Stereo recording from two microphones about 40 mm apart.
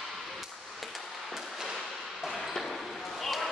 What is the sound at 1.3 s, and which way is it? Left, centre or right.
Firecracker, centre.